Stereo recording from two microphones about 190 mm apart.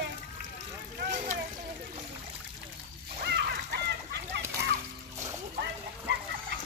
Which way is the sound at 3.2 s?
60° right (ahead or behind).